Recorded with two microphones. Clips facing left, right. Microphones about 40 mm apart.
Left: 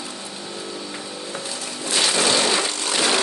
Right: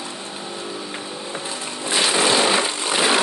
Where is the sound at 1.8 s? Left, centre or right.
Centre.